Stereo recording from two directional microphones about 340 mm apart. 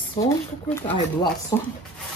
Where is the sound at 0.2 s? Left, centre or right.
Left.